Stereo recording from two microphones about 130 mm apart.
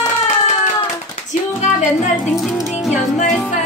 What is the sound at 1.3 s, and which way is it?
Music, 65° left (ahead or behind).